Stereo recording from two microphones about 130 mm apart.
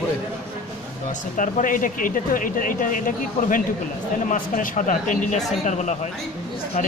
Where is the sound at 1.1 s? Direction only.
80° left.